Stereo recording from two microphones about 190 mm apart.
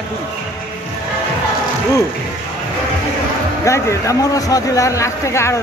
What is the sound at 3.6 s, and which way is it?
A man's voice, 15° left (ahead or behind).